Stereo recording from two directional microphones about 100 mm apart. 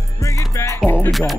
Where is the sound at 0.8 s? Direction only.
15° left (ahead or behind).